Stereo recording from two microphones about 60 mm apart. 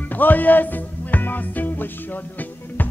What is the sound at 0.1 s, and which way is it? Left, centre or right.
Music, left.